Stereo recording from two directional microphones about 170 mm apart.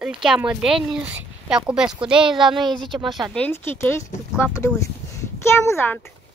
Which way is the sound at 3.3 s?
10° left (ahead or behind).